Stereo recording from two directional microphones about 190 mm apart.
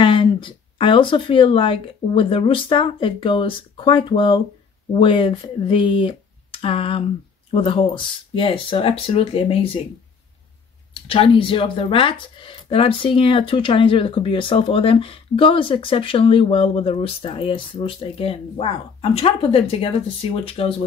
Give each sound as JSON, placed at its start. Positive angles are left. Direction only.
{"t": 0.0, "sound": "speech", "side_deg": 25}
{"t": 11.1, "sound": "speech", "side_deg": 30}